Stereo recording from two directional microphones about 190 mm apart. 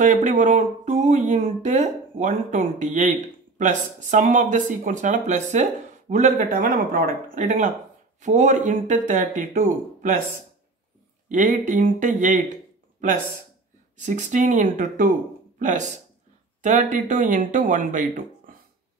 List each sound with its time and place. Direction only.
0.0 s speech: 40° right (ahead or behind)
11.2 s speech: 40° right (ahead or behind)
13.9 s speech: 40° right (ahead or behind)